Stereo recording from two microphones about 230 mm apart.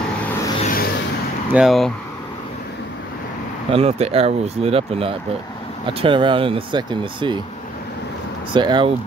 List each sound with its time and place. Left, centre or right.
0.6 s a sound: left
1.5 s speech: centre
3.7 s speech: right
8.5 s speech: centre